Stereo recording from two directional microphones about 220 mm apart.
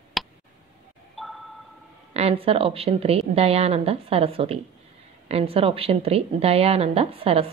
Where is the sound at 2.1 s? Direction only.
25° right (ahead or behind).